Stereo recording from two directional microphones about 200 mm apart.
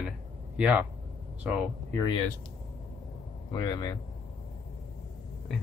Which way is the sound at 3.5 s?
20° left (ahead or behind).